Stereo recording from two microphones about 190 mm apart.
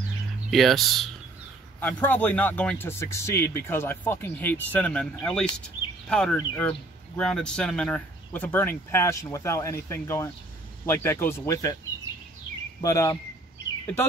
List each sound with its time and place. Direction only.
0.5 s speech: centre (ahead or behind); by 11.7 s 15° left (ahead or behind)
12.8 s speech: 15° left (ahead or behind)